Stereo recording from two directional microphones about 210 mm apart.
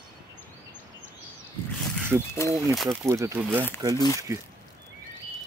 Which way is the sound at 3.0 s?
15° right (ahead or behind).